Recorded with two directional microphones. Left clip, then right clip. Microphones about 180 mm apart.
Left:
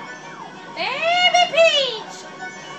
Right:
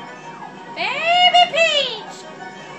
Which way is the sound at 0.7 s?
35° left (ahead or behind).